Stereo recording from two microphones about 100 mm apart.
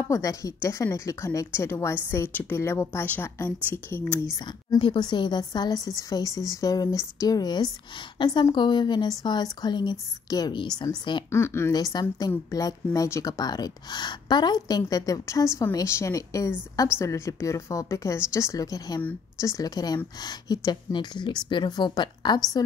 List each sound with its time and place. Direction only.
0.1 s a woman's voice: 35° left (ahead or behind)
4.7 s a woman's voice: 50° left (ahead or behind)
11.3 s a woman's voice: 25° left (ahead or behind)
11.7 s a woman's voice: 45° left (ahead or behind)